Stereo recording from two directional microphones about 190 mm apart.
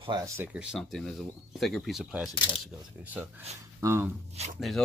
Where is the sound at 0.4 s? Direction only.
5° right (ahead or behind).